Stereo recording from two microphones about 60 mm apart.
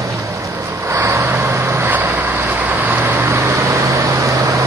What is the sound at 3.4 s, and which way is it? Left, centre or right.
Vehicle, right.